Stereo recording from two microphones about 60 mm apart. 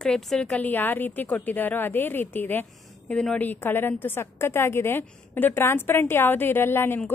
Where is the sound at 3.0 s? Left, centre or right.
Centre.